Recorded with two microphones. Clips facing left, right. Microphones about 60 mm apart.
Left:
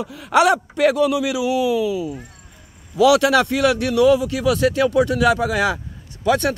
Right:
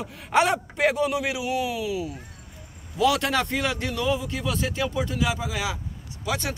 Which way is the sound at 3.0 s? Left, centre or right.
Left.